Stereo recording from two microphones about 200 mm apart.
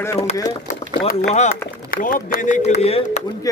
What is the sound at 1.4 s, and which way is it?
Speech, 40° left (ahead or behind).